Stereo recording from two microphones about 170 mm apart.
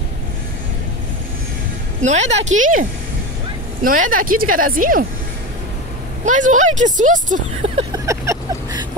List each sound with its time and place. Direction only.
2.0 s speech: 45° right (ahead or behind)
6.2 s speech: 45° right (ahead or behind)
7.9 s vehicle: 20° right (ahead or behind)